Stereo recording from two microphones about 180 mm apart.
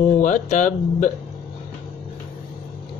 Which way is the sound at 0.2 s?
45° left (ahead or behind).